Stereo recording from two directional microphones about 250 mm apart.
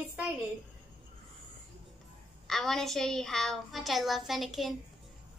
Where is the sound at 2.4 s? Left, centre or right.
Centre.